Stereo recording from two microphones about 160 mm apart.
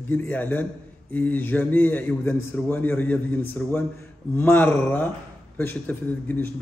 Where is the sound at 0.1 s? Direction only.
10° left (ahead or behind).